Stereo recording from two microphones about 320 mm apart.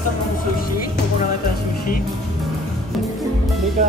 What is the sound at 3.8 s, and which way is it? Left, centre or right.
Music, right.